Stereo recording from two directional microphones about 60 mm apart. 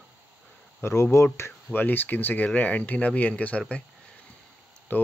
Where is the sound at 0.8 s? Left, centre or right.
Left.